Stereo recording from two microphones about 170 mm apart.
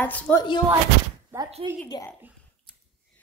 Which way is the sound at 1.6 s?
35° right (ahead or behind).